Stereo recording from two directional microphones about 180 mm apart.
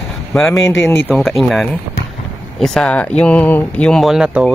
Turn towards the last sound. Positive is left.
turn(degrees=-5)  # may be behind; listen again after turning